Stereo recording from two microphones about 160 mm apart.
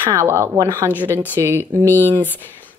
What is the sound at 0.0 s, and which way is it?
Speech, 15° right (ahead or behind).